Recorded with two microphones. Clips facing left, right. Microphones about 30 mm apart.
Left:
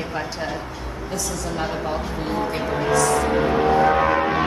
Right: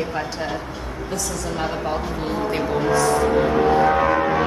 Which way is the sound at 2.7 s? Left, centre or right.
Centre.